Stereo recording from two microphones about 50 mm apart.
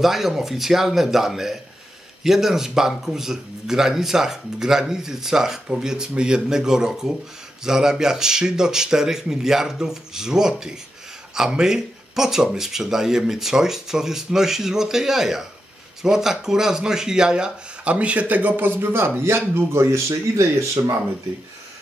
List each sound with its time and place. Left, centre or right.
0.0 s a man's voice: centre
17.9 s speech: right
18.8 s speech: right